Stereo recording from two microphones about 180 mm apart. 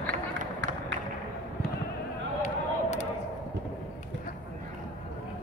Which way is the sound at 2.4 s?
40° left (ahead or behind).